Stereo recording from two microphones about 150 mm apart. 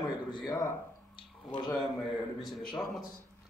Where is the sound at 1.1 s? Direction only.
30° left (ahead or behind).